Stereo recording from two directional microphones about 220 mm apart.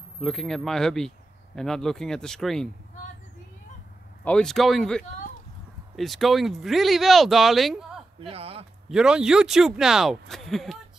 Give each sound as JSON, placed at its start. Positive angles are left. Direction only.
{"t": 0.2, "sound": "speech", "side_deg": 0}
{"t": 4.2, "sound": "speech", "side_deg": 5}
{"t": 8.2, "sound": "speech", "side_deg": -25}
{"t": 8.8, "sound": "speech", "side_deg": -5}